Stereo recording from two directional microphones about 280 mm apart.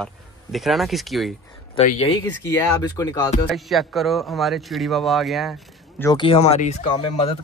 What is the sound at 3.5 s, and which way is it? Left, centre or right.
Speech, centre.